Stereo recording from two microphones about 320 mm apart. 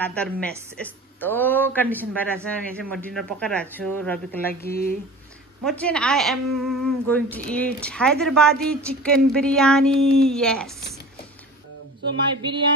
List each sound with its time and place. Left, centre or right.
0.0 s speech: centre
4.6 s speech: left
5.6 s speech: centre
12.4 s speech: centre